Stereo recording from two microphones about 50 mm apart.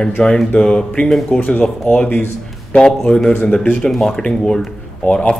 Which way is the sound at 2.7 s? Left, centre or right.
Centre.